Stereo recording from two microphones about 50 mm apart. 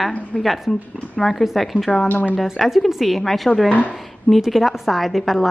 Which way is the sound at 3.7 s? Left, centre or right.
Left.